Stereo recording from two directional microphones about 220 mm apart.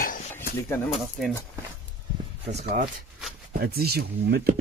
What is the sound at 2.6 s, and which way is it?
Speech, 40° right (ahead or behind).